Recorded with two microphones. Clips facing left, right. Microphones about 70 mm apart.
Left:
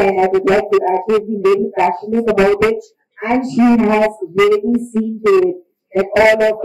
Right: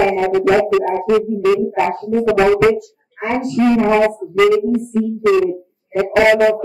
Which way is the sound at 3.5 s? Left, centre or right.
Centre.